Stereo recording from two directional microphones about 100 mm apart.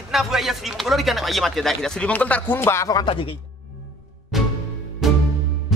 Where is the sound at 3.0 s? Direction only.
60° left (ahead or behind).